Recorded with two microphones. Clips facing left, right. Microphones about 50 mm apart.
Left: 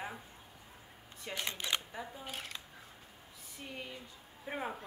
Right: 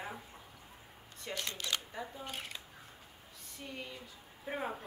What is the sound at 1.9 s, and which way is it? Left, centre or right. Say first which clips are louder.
Speech: right 1 dB; centre.